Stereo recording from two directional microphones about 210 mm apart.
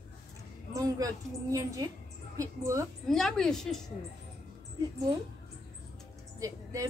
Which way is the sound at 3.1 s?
Centre (ahead or behind).